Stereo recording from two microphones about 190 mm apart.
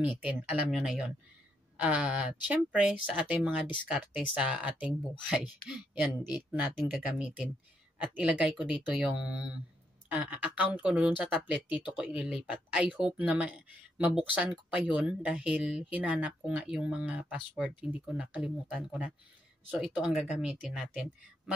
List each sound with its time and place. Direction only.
0.2 s speech: centre (ahead or behind)
6.6 s speech: 10° right (ahead or behind)